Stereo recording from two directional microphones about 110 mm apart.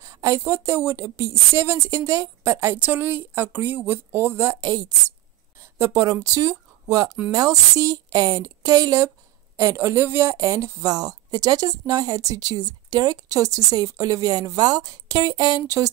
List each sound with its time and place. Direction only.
0.0 s a woman's voice: 30° right (ahead or behind)
5.6 s a woman's voice: 25° right (ahead or behind)